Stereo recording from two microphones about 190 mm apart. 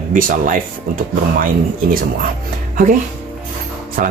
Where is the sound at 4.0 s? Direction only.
50° right (ahead or behind).